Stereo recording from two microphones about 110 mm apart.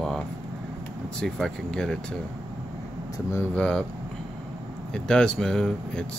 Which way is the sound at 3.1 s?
25° left (ahead or behind).